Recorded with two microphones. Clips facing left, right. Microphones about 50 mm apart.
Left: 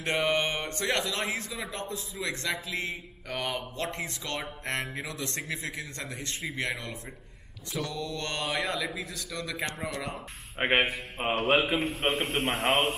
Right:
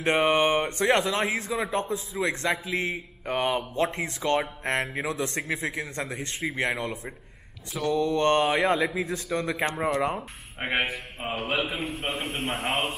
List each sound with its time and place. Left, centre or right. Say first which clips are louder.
0.0 s speech: right 5 dB; right
10.6 s mantra: left 2 dB; left